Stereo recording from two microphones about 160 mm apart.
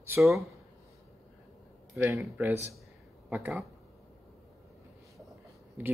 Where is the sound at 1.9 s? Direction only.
15° right (ahead or behind).